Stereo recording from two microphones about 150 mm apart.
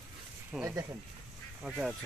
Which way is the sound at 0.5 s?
5° right (ahead or behind).